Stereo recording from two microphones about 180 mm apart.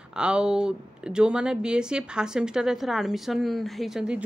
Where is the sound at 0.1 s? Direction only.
5° right (ahead or behind).